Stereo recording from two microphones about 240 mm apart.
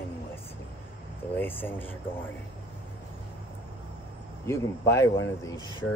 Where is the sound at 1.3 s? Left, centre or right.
Centre.